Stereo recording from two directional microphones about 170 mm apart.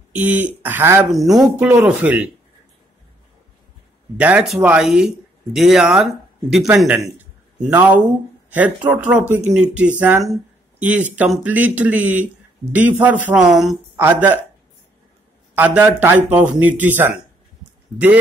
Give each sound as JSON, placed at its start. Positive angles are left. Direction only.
{"t": 0.1, "sound": "speech", "side_deg": -10}
{"t": 1.0, "sound": "speech", "side_deg": 0}
{"t": 4.2, "sound": "speech", "side_deg": -10}
{"t": 15.5, "sound": "speech", "side_deg": -10}